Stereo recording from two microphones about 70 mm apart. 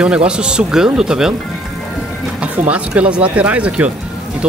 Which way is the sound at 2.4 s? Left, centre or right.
Centre.